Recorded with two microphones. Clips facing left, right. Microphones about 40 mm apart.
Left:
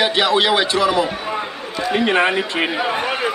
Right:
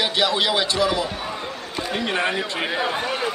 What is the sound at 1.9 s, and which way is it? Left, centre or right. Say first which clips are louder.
A man's voice: left 7 dB; left.